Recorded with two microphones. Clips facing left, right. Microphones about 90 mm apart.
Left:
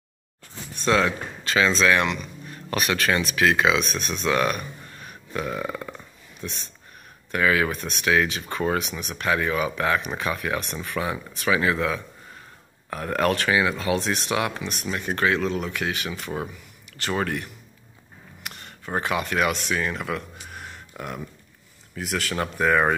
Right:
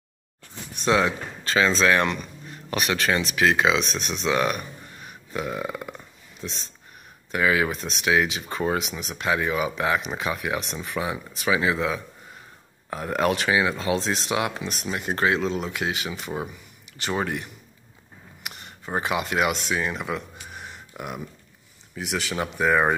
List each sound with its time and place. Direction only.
0.7 s speech: 20° right (ahead or behind)
1.4 s speech: 30° right (ahead or behind)
2.5 s speech: 20° right (ahead or behind)
6.4 s speech: 25° right (ahead or behind)
16.2 s speech: 10° right (ahead or behind)